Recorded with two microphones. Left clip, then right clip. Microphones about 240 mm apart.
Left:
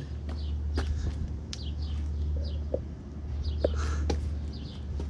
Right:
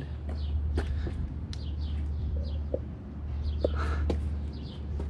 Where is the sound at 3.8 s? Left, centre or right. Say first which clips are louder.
Right 1 dB; centre.